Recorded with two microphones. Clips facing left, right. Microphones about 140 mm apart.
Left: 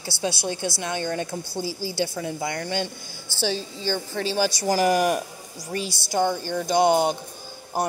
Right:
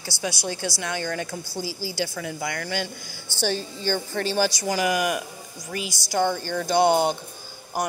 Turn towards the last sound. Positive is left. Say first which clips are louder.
# left 2 dB
turn(degrees=30)  # may be behind; listen again after turning